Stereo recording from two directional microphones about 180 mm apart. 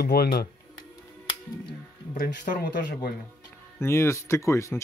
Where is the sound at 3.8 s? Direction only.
15° left (ahead or behind).